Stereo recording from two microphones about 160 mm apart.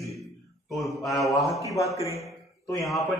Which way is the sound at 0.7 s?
Centre (ahead or behind).